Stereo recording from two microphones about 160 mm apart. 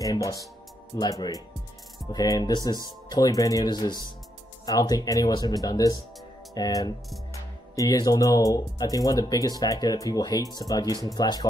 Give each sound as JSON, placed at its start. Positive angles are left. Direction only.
{"t": 0.0, "sound": "speech", "side_deg": 20}